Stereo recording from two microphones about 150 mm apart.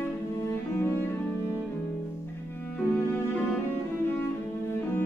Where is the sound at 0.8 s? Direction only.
15° left (ahead or behind).